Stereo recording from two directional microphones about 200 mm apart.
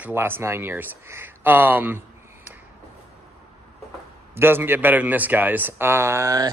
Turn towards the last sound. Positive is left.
turn(degrees=-15)  # may be behind; listen again after turning